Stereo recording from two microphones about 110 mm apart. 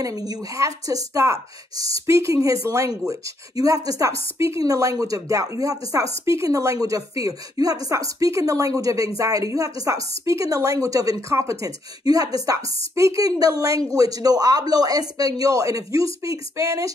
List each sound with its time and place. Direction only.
0.0 s a woman's voice: 35° right (ahead or behind)